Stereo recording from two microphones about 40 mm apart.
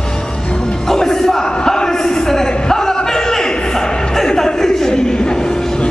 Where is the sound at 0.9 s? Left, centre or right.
Centre.